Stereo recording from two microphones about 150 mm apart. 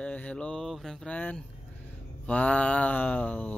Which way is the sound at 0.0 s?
10° left (ahead or behind).